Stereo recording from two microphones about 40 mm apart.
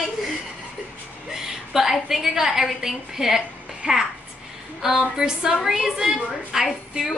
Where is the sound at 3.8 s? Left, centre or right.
Right.